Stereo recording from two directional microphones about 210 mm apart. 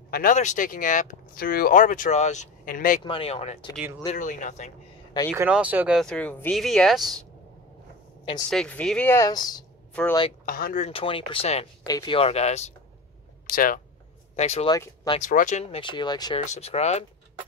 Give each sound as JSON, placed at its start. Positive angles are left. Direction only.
{"t": 0.1, "sound": "speech", "side_deg": 40}
{"t": 3.0, "sound": "speech", "side_deg": 25}
{"t": 5.3, "sound": "speech", "side_deg": -10}
{"t": 8.5, "sound": "speech", "side_deg": 5}
{"t": 10.4, "sound": "speech", "side_deg": 40}
{"t": 10.9, "sound": "speech", "side_deg": 25}
{"t": 14.3, "sound": "speech", "side_deg": 30}
{"t": 14.7, "sound": "speech", "side_deg": 20}
{"t": 15.1, "sound": "speech", "side_deg": 35}
{"t": 16.4, "sound": "speech", "side_deg": 30}